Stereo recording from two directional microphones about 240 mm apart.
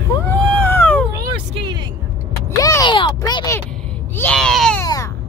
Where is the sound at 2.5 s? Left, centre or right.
Centre.